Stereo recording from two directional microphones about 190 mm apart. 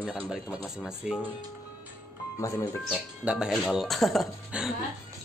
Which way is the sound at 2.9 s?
5° right (ahead or behind).